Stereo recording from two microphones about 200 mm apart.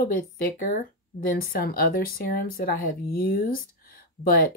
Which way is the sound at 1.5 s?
45° left (ahead or behind).